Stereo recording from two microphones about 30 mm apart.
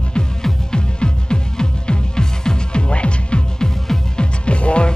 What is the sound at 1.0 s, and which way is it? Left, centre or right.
Music, left.